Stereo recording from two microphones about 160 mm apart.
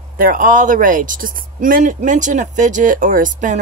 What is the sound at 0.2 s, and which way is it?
Speech, 55° right (ahead or behind).